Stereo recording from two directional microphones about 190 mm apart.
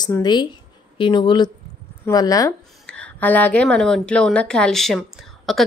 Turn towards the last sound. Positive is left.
turn(degrees=0)  # may be behind; listen again after turning